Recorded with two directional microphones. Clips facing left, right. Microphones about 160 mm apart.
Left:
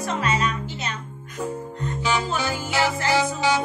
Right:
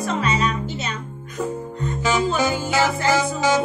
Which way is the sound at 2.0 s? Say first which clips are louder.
Right 5 dB; 45° right (ahead or behind).